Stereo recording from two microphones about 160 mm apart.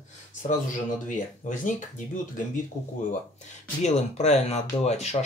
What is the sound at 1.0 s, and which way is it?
Speech, 55° left (ahead or behind).